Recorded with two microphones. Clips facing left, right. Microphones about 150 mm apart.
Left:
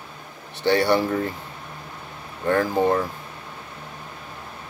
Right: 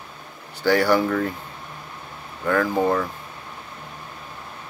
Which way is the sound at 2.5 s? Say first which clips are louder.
Even; 30° left (ahead or behind).